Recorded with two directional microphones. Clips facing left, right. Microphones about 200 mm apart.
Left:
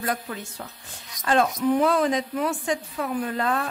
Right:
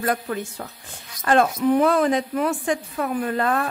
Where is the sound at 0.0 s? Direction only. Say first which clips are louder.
Right 5 dB; 55° right (ahead or behind).